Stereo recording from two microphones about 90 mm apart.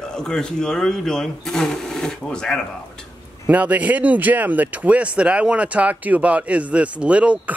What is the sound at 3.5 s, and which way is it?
Speech, 15° right (ahead or behind).